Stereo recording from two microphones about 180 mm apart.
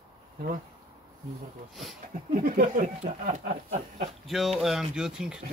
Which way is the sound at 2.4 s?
50° right (ahead or behind).